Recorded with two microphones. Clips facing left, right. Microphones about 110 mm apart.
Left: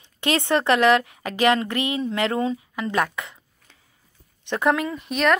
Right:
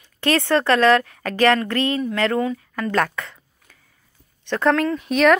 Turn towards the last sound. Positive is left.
turn(degrees=0)  # may be behind; listen again after turning